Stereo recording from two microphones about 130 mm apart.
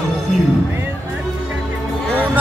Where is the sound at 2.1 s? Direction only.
15° right (ahead or behind).